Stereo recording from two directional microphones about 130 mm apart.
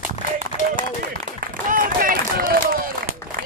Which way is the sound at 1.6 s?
90° right.